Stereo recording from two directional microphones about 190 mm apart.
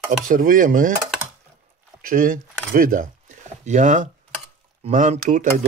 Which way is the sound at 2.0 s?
50° right (ahead or behind).